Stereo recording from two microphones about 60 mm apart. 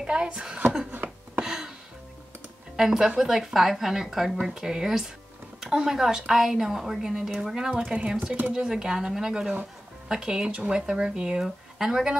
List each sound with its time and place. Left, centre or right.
0.0 s a woman's voice: centre
0.9 s a sound: right
1.4 s music: centre
2.7 s a woman's voice: centre